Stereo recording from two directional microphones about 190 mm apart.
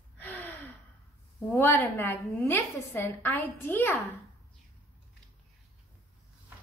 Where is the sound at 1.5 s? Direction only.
10° left (ahead or behind).